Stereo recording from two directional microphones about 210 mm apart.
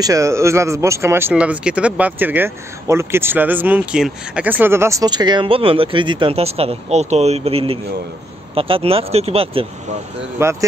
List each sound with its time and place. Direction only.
0.0 s speech: 15° right (ahead or behind)
10.4 s speech: 10° right (ahead or behind)